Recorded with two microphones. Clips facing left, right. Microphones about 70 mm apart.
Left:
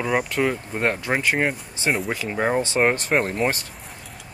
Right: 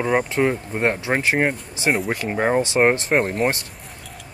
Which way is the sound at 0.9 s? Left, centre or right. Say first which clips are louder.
Right 2 dB; centre.